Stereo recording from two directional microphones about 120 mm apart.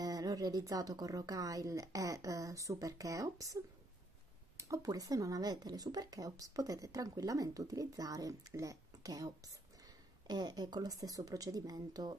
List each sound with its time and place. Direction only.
0.0 s speech: 30° right (ahead or behind)
4.6 s speech: 30° right (ahead or behind)